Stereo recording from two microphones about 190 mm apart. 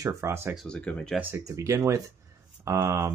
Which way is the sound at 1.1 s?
10° right (ahead or behind).